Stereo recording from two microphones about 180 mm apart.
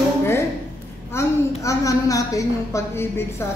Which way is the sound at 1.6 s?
20° left (ahead or behind).